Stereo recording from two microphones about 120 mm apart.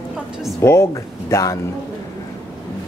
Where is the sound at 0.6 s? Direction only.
25° left (ahead or behind).